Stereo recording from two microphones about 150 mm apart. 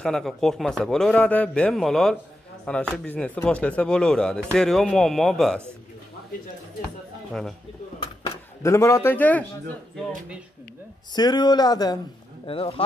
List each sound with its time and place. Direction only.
0.0 s speech: centre (ahead or behind)
8.6 s speech: 20° left (ahead or behind)
11.1 s speech: 30° left (ahead or behind)
12.4 s speech: 40° left (ahead or behind)